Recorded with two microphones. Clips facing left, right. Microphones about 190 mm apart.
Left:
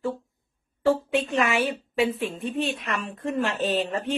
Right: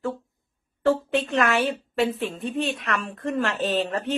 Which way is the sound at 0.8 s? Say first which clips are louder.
Even; 5° left (ahead or behind).